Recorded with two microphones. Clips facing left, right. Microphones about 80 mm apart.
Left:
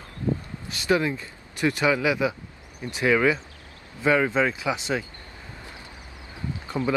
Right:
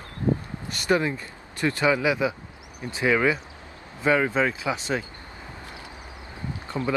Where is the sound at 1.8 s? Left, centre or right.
Right.